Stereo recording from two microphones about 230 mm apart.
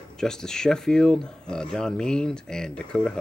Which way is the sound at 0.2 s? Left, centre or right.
Centre.